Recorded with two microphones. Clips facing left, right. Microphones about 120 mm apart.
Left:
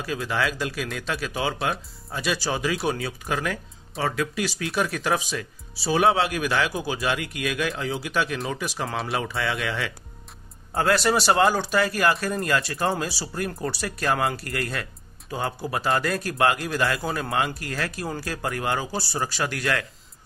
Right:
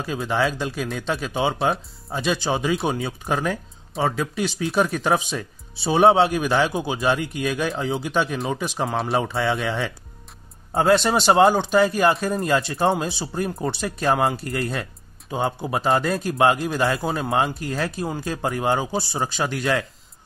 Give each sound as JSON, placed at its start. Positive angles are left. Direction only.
{"t": 0.0, "sound": "speech", "side_deg": -25}
{"t": 15.3, "sound": "speech", "side_deg": -25}